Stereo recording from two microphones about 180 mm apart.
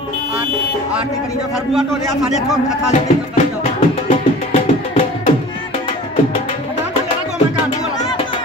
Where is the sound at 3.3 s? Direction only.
35° left (ahead or behind).